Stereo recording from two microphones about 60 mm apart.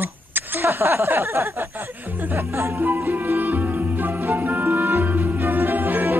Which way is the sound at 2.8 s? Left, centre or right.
Right.